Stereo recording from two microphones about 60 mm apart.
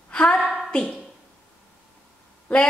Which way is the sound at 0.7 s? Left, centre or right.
Centre.